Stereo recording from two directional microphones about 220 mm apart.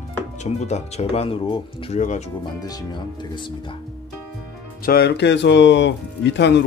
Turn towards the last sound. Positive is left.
turn(degrees=50)  # may be behind; listen again after turning